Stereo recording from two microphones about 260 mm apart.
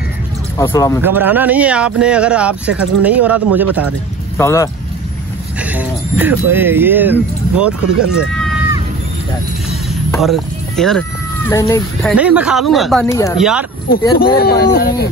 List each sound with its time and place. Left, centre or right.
0.6 s speech: centre
1.0 s speech: centre
4.4 s speech: centre
5.6 s speech: centre
10.2 s speech: centre
13.4 s speech: centre
14.2 s speech: left